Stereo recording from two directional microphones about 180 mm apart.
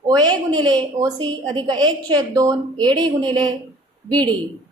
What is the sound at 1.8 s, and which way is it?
Speech, 20° right (ahead or behind).